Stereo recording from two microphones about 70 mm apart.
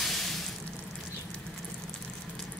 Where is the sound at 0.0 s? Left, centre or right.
Centre.